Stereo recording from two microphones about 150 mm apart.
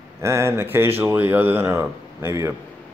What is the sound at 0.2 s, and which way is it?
Speech, 20° right (ahead or behind).